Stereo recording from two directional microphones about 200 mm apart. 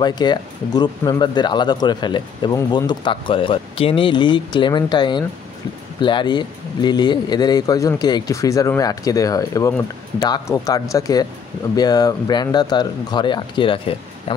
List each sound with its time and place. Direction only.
0.0 s speech: 20° left (ahead or behind)